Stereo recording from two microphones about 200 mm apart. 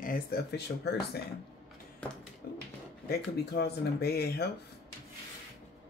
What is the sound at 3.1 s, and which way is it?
Speech, 55° left (ahead or behind).